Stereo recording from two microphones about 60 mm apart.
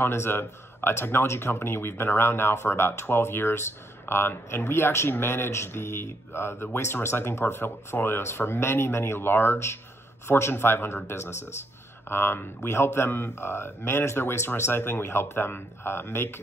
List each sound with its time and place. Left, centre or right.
0.0 s speech: left